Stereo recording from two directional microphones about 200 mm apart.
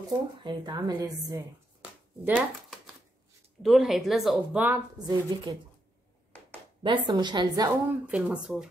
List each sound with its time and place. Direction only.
0.4 s a woman's voice: 20° right (ahead or behind)
1.8 s shuffling cards: 5° right (ahead or behind)
3.6 s a woman's voice: centre (ahead or behind); by 5.5 s 20° right (ahead or behind)
6.8 s a woman's voice: 25° right (ahead or behind)
8.1 s a woman's voice: 5° right (ahead or behind)